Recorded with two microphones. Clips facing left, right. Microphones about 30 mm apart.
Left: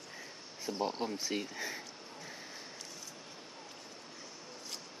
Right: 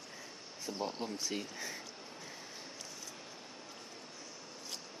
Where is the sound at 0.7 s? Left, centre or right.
Centre.